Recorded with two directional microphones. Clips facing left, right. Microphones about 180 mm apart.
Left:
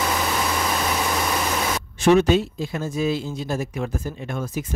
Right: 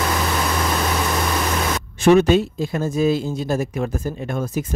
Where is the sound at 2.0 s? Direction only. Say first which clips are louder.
Right 3 dB; 55° right (ahead or behind).